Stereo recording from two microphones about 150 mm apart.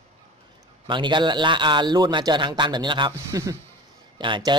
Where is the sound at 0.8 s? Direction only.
30° right (ahead or behind).